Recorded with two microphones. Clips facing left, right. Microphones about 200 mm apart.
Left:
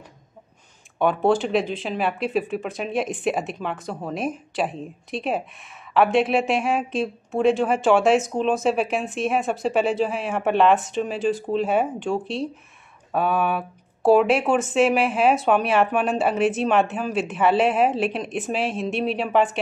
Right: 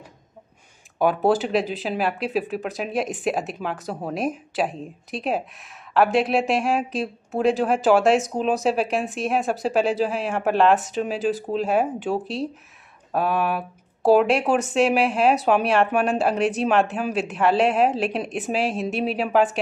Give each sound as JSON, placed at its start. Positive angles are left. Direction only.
{"t": 0.9, "sound": "speech", "side_deg": -5}